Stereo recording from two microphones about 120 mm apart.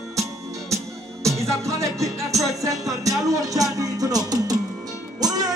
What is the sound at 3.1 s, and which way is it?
Music, 30° right (ahead or behind).